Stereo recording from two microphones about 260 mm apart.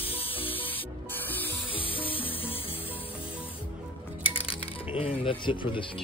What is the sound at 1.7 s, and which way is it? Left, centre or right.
Music, left.